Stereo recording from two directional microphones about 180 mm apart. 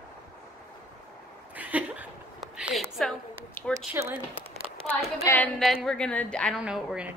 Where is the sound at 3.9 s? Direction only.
15° right (ahead or behind).